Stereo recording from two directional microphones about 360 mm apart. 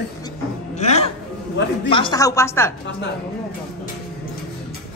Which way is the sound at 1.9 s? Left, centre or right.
Centre.